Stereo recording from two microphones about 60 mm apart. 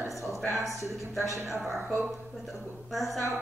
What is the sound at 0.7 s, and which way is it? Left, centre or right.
Speech, right.